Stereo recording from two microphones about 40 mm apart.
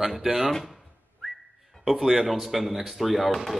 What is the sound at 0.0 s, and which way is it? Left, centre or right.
Speech, centre.